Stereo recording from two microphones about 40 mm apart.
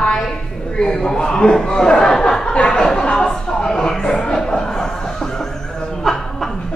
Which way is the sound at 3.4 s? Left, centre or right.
Centre.